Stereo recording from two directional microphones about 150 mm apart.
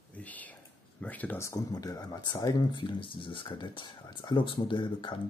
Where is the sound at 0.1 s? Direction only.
10° left (ahead or behind).